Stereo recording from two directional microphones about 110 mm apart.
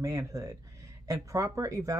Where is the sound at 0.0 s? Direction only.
30° right (ahead or behind).